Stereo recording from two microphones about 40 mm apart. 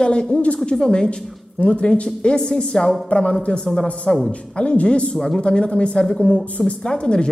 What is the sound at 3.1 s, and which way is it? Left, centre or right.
Speech, left.